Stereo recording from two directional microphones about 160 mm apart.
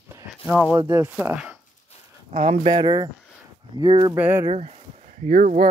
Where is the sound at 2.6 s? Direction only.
25° right (ahead or behind).